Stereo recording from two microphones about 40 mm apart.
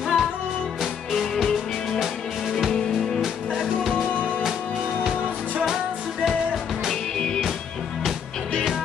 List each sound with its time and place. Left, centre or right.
0.0 s music: centre
3.2 s music: centre
6.2 s music: centre
7.2 s music: centre